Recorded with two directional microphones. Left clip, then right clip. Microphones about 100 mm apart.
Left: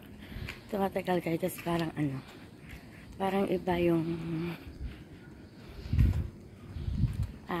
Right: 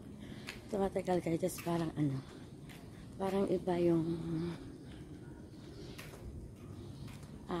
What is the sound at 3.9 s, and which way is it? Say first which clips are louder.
Speech: left 3 dB; 25° right (ahead or behind).